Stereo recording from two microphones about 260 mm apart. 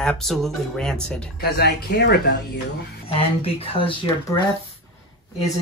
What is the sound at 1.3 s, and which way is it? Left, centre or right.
Speech, left.